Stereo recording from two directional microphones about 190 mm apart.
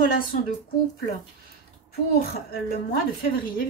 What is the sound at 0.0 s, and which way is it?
Speech, 45° left (ahead or behind).